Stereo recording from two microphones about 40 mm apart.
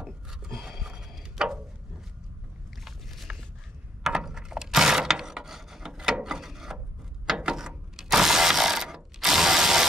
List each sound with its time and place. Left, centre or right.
0.5 s a sound: centre
3.3 s walk: right
4.0 s mechanisms: centre
6.2 s wood: centre
7.3 s mechanisms: centre